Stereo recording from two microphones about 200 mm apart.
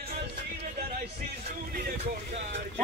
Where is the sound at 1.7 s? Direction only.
50° right (ahead or behind).